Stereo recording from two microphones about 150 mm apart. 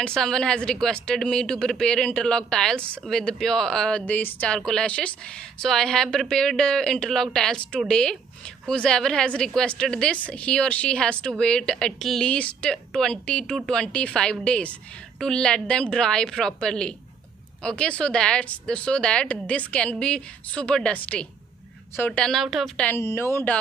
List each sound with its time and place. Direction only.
0.0 s a woman's voice: 5° left (ahead or behind)
22.8 s a woman's voice: 15° left (ahead or behind)